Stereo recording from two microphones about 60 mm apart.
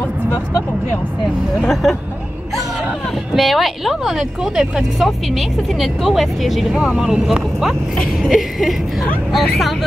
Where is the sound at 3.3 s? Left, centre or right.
Centre.